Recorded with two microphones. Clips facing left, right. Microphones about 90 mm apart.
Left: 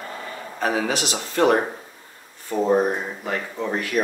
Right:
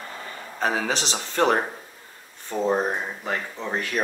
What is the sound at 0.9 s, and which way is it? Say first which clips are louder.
Speech: left 2 dB; 30° right (ahead or behind).